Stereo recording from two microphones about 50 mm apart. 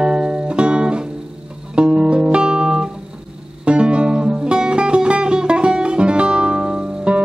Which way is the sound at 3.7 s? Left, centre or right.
Right.